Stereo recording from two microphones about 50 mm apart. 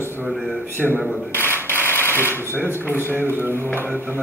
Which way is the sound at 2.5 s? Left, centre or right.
Right.